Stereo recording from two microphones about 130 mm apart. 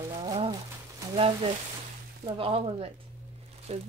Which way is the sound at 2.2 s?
45° right (ahead or behind).